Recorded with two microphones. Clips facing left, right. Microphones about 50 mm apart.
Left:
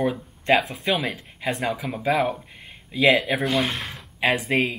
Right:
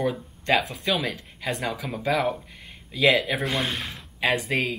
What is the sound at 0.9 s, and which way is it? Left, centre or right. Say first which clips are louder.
Speech: left 2 dB; left.